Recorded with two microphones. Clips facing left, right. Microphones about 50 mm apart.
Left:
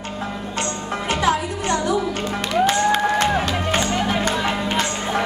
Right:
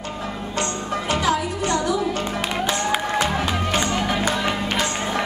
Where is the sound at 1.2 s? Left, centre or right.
Left.